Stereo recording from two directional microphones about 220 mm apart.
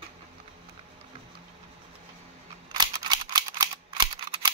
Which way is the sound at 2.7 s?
20° right (ahead or behind).